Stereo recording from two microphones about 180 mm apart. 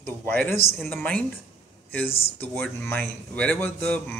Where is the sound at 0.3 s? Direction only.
10° left (ahead or behind).